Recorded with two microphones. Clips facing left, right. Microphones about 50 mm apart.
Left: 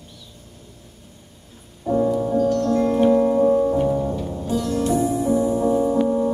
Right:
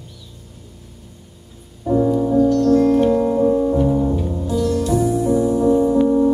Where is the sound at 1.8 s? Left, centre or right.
Centre.